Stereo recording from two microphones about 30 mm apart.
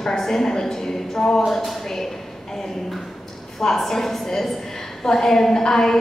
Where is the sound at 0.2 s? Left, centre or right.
Centre.